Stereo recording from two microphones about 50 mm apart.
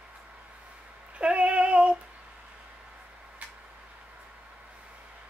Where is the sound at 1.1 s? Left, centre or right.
Right.